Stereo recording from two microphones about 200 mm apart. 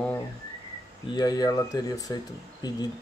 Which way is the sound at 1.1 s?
20° left (ahead or behind).